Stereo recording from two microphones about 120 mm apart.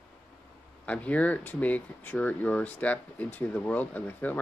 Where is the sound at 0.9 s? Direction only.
10° left (ahead or behind).